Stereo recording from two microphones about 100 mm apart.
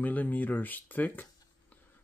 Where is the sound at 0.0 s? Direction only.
15° left (ahead or behind).